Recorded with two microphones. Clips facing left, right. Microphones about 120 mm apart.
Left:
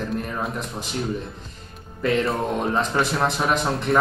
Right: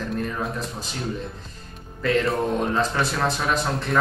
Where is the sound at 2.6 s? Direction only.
20° left (ahead or behind).